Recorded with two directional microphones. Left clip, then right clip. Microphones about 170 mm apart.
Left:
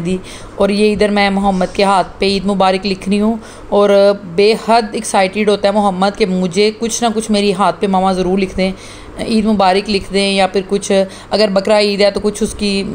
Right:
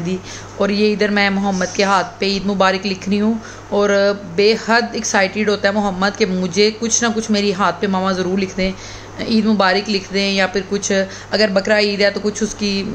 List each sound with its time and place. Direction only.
0.0 s a woman's voice: 20° left (ahead or behind)